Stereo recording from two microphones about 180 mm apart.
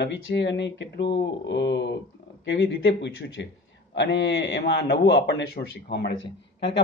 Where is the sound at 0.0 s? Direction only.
75° left (ahead or behind).